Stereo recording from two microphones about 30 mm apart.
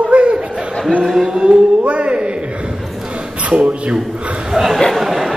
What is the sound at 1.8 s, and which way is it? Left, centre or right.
Speech, right.